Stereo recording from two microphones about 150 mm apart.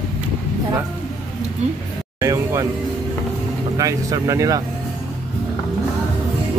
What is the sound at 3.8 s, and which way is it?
Speech, 20° right (ahead or behind).